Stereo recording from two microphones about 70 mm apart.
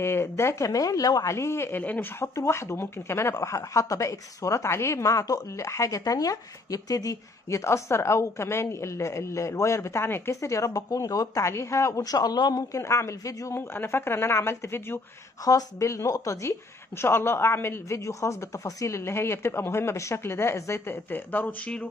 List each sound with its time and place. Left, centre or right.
0.0 s speech: left
1.3 s a woman's voice: left
1.8 s speech: left
2.3 s speech: left
10.4 s speech: left
12.0 s a man's voice: left
12.7 s speech: left
13.6 s a woman's voice: left
15.4 s speech: left
17.0 s a woman's voice: left